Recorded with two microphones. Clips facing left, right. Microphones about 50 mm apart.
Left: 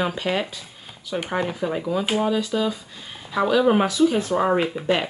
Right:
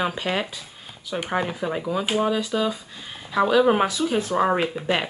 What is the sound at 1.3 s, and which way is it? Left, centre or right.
Speech, centre.